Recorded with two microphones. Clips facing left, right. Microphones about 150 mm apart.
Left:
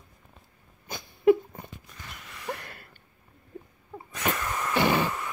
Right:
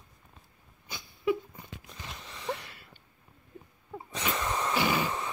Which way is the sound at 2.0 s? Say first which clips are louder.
Right 1 dB; 25° right (ahead or behind).